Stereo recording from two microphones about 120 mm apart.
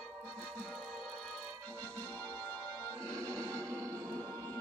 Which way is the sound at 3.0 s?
25° right (ahead or behind).